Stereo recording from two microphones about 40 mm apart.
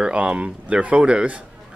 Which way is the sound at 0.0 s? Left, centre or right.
Right.